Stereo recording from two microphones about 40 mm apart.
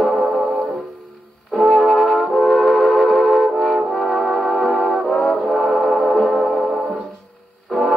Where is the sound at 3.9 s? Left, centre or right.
Centre.